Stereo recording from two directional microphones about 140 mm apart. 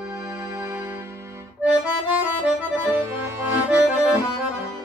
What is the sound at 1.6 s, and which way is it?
Accordion, 10° right (ahead or behind).